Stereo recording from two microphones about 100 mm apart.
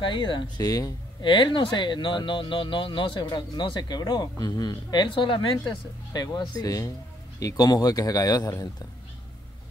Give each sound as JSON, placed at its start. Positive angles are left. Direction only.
{"t": 0.0, "sound": "speech", "side_deg": 50}
{"t": 0.7, "sound": "a man's voice", "side_deg": 35}
{"t": 1.2, "sound": "speech", "side_deg": 50}
{"t": 6.1, "sound": "a man's voice", "side_deg": 40}